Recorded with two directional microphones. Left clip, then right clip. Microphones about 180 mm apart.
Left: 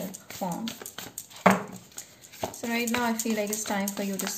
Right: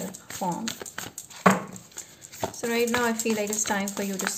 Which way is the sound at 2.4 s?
35° right (ahead or behind).